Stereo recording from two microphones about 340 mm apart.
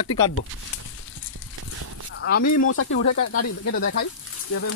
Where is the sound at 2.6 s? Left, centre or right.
Left.